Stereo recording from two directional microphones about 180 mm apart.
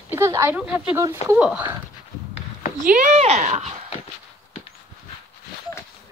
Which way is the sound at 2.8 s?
45° right (ahead or behind).